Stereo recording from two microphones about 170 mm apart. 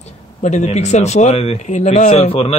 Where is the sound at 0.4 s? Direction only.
45° left (ahead or behind).